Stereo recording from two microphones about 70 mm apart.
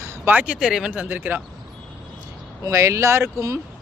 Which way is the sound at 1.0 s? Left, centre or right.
Right.